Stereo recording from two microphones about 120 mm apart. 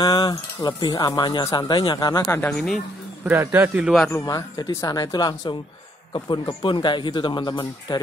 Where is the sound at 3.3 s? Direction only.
20° right (ahead or behind).